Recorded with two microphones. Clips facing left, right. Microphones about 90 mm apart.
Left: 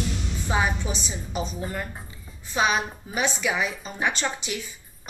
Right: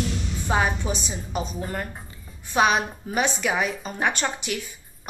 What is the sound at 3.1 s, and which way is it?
Speech, 45° right (ahead or behind).